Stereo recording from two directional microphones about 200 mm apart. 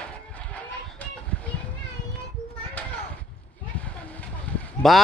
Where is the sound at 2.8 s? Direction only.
5° left (ahead or behind).